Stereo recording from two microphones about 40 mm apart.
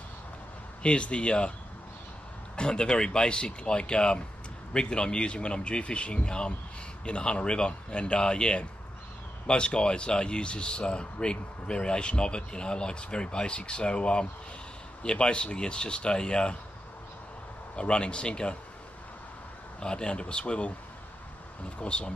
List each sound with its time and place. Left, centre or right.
0.8 s speech: left
2.5 s speech: left
17.7 s speech: left
19.8 s speech: left